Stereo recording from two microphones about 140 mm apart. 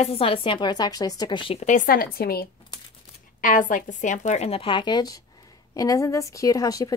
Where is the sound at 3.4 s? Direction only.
70° left (ahead or behind); by 6.9 s 25° left (ahead or behind).